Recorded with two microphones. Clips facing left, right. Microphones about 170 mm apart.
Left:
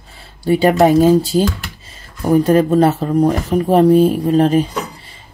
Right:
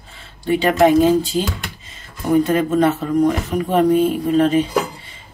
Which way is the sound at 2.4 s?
35° left (ahead or behind).